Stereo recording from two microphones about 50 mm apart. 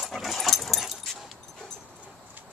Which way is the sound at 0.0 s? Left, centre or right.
Centre.